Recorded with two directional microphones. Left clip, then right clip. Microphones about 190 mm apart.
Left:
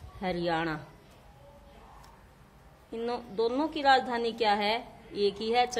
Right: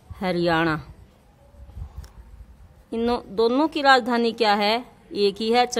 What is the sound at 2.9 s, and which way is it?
A woman's voice, 40° right (ahead or behind).